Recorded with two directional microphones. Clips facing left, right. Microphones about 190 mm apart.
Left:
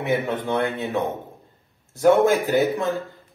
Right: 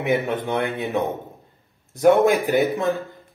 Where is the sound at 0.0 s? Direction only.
15° right (ahead or behind).